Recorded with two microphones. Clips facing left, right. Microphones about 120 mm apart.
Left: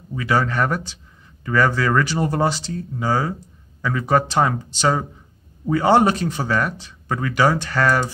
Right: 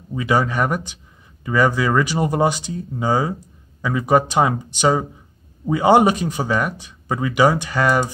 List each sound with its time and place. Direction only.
0.1 s speech: 20° right (ahead or behind)